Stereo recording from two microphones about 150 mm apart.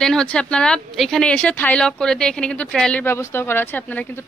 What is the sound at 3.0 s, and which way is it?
A woman's voice, 15° left (ahead or behind).